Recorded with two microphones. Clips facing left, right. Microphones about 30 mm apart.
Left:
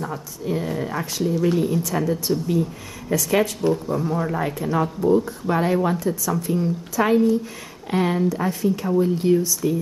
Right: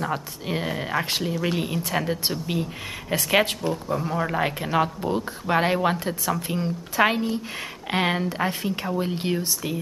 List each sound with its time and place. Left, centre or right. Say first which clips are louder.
0.0 s a woman's voice: right 1 dB; right
3.6 s speech: left 6 dB; centre
3.9 s speech: left 3 dB; right
4.2 s a woman's voice: left 1 dB; right